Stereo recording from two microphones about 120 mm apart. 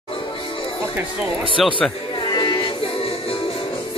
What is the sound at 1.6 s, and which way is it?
Speech, centre (ahead or behind).